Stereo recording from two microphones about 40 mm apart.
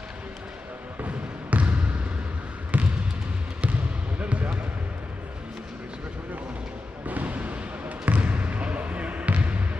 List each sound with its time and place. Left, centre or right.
1.0 s basketball bounce: right
4.2 s basketball bounce: right
7.1 s basketball bounce: right